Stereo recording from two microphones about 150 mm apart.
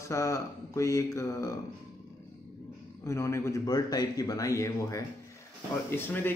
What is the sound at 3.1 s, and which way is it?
Speech, 20° left (ahead or behind).